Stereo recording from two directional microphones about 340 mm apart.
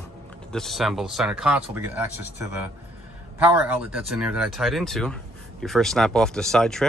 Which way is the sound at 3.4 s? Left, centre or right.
Centre.